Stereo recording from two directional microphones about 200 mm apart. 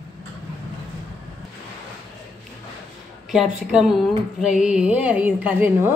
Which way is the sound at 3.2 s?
Centre (ahead or behind).